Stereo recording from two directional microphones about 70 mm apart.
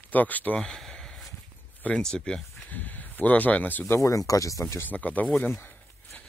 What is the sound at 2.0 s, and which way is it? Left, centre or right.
Speech, centre.